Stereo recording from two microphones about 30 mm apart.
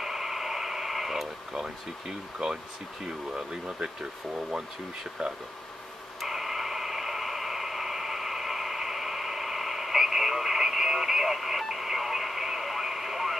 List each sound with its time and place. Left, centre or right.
0.0 s radio: centre
1.5 s speech: right
3.8 s speech: right
6.2 s radio: centre